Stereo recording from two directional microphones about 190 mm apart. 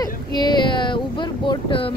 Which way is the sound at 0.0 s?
20° left (ahead or behind).